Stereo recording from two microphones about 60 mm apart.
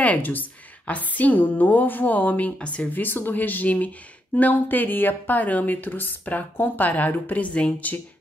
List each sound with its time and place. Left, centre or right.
0.0 s a woman's voice: left